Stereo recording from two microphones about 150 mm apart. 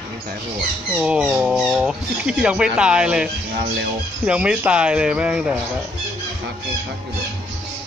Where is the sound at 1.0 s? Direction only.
5° right (ahead or behind).